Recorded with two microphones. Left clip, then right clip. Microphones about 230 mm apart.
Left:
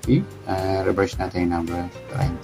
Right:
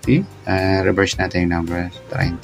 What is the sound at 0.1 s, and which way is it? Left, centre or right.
Speech, centre.